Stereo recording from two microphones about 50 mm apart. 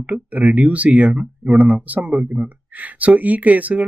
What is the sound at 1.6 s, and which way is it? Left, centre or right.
Speech, right.